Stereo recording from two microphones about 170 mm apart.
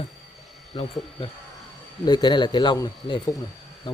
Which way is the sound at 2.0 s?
25° left (ahead or behind).